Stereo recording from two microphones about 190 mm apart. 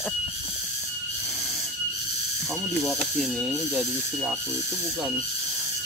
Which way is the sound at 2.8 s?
Centre (ahead or behind).